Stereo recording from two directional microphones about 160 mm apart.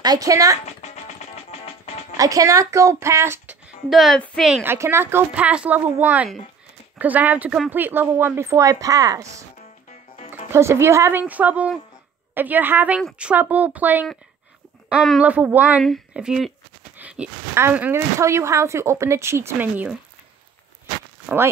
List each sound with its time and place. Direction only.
0.0 s speech: 25° right (ahead or behind)
0.7 s music: 45° left (ahead or behind)
2.1 s speech: 20° right (ahead or behind)
3.9 s speech: centre (ahead or behind)
4.6 s speech: 15° right (ahead or behind)
9.6 s music: 45° left (ahead or behind)
10.5 s speech: 15° right (ahead or behind)